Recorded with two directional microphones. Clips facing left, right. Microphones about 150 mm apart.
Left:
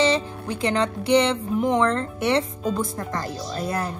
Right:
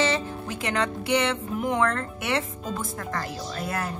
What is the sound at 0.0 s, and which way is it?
Speech, 25° left (ahead or behind).